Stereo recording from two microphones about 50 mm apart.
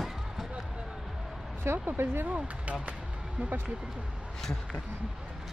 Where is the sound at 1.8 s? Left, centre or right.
Right.